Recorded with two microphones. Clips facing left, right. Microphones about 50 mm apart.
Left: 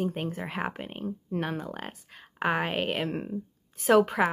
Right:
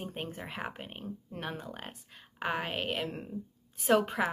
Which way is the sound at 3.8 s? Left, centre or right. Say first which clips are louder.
Left 5 dB; centre.